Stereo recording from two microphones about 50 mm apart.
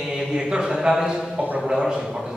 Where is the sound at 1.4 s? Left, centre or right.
Right.